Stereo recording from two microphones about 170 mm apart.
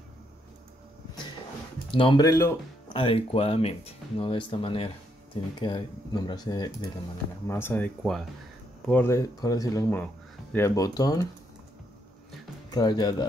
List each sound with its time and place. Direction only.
1.9 s speech: 30° left (ahead or behind)
2.2 s speech: 15° left (ahead or behind)
2.9 s speech: 30° left (ahead or behind)
7.4 s speech: 15° left (ahead or behind)
8.0 s speech: centre (ahead or behind)
8.8 s speech: 10° left (ahead or behind)
12.7 s speech: 25° left (ahead or behind)